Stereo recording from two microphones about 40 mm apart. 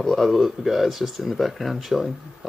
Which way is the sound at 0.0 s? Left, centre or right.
Centre.